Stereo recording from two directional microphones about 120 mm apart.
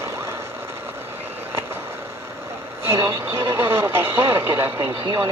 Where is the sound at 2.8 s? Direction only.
20° right (ahead or behind).